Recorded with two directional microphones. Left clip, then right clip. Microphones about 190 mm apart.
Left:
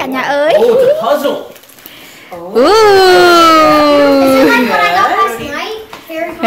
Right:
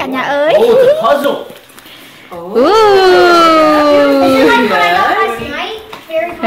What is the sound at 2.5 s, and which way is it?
A woman's voice, 15° left (ahead or behind).